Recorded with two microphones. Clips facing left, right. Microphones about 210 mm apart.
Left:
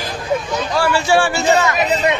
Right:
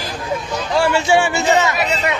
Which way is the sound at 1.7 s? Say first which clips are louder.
Left 3 dB; 20° left (ahead or behind).